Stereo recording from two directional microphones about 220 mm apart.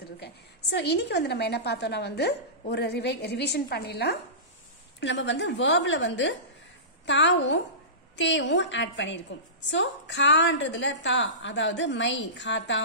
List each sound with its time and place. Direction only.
0.2 s a woman's voice: 50° left (ahead or behind)